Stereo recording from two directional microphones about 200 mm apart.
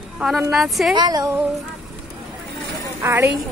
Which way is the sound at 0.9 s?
20° right (ahead or behind).